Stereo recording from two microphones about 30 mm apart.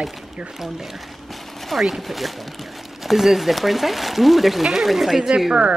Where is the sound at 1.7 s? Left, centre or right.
Centre.